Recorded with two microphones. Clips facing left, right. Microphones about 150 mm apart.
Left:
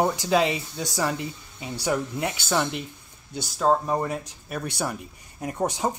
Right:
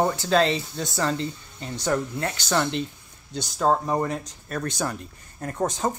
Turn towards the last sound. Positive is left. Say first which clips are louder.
# even
turn(degrees=15)  # may be behind; listen again after turning